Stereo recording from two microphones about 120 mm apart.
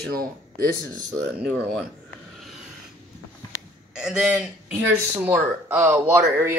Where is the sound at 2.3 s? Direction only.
Centre (ahead or behind).